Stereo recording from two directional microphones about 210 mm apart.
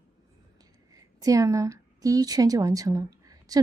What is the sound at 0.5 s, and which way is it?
Speech, 15° right (ahead or behind).